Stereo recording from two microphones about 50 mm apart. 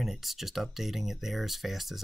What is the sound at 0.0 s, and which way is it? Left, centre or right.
Speech, centre.